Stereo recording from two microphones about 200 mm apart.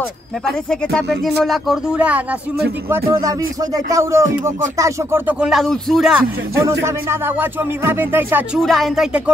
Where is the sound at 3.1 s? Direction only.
15° right (ahead or behind); by 6.2 s centre (ahead or behind).